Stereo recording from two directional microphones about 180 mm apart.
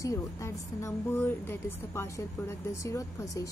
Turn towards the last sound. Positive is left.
turn(degrees=15)  # may be behind; listen again after turning